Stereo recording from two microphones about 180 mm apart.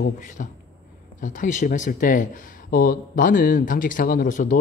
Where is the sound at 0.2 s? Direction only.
45° left (ahead or behind).